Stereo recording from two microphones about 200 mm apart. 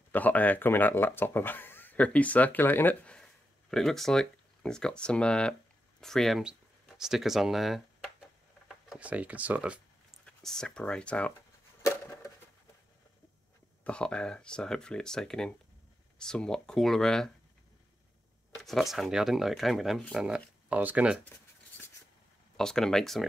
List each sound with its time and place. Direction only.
0.1 s speech: 10° left (ahead or behind)
11.8 s a sound: 15° left (ahead or behind)
13.8 s speech: 5° left (ahead or behind)
18.6 s speech: centre (ahead or behind)
22.6 s speech: 5° left (ahead or behind)